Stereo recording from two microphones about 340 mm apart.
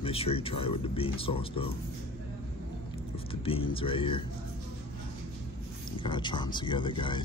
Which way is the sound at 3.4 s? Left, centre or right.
Centre.